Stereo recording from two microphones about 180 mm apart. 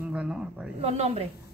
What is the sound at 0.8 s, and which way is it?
Speech, 35° right (ahead or behind).